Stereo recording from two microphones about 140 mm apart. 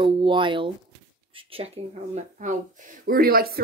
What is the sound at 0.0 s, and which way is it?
Speech, 35° right (ahead or behind).